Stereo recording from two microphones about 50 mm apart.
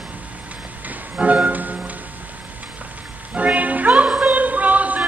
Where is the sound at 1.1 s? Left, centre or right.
Right.